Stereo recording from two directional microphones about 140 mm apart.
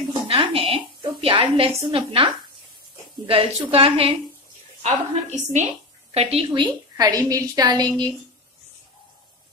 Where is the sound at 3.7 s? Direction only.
40° right (ahead or behind).